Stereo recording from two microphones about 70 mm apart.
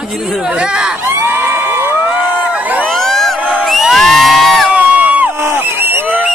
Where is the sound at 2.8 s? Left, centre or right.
Centre.